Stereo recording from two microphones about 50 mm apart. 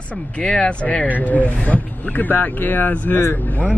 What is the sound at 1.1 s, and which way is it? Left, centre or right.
Speech, left.